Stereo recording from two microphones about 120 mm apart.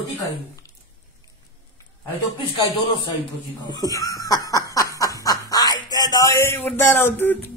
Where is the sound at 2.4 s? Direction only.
40° left (ahead or behind).